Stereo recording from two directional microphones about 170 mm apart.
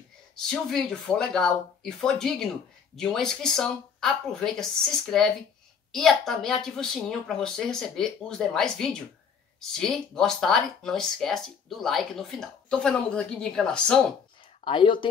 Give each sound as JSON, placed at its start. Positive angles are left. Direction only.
{"t": 0.4, "sound": "speech", "side_deg": 0}
{"t": 14.6, "sound": "speech", "side_deg": 30}